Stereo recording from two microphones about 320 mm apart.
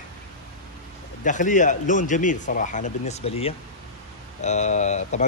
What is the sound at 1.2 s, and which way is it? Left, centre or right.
Speech, left.